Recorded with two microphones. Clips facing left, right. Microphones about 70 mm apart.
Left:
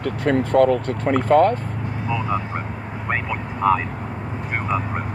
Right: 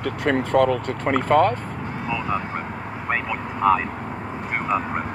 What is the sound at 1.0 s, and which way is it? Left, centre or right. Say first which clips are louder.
Speech: left 2 dB; right.